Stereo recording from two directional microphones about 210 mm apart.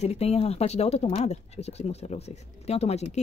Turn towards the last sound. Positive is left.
turn(degrees=30)  # may be behind; listen again after turning